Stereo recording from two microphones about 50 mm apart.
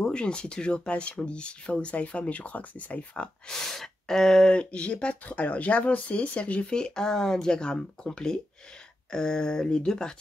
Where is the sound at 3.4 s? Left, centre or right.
Centre.